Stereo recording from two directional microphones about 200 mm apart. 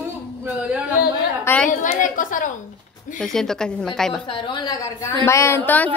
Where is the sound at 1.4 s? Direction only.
10° left (ahead or behind).